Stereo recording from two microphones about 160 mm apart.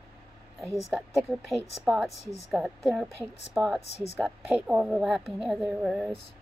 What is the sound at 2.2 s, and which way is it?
Speech, 40° left (ahead or behind).